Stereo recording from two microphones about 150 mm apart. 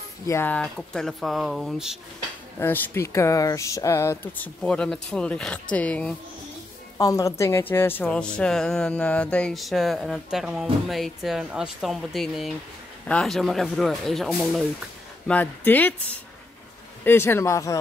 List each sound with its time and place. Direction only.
0.3 s a woman's voice: 15° left (ahead or behind)
2.6 s speech: 15° left (ahead or behind)
4.6 s speech: 5° left (ahead or behind)
7.0 s a woman's voice: 20° left (ahead or behind); by 14.6 s centre (ahead or behind)
15.2 s speech: 10° left (ahead or behind)
17.0 s speech: 15° left (ahead or behind)